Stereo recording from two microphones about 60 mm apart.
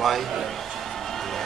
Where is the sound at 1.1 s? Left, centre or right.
Centre.